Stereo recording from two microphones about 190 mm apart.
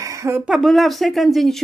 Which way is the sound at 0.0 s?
15° right (ahead or behind).